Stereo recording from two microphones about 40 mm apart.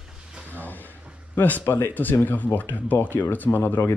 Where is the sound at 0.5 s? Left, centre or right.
Left.